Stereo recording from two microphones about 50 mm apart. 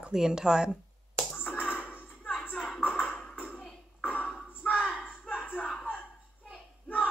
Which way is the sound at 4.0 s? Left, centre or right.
Left.